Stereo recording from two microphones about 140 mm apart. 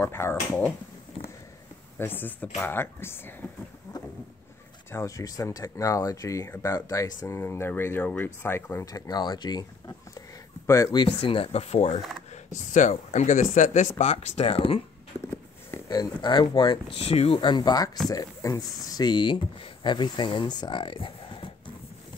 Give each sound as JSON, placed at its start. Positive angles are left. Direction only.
{"t": 0.0, "sound": "speech", "side_deg": 15}
{"t": 2.0, "sound": "speech", "side_deg": 15}
{"t": 4.9, "sound": "speech", "side_deg": 25}
{"t": 12.7, "sound": "speech", "side_deg": 60}
{"t": 15.9, "sound": "speech", "side_deg": 30}
{"t": 16.9, "sound": "speech", "side_deg": 45}
{"t": 17.4, "sound": "speech", "side_deg": 35}